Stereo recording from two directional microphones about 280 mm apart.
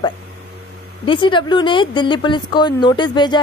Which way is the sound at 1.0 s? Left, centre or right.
Centre.